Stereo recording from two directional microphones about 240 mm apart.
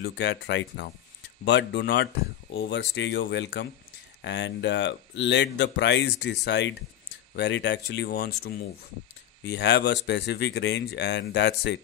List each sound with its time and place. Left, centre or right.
0.0 s speech: left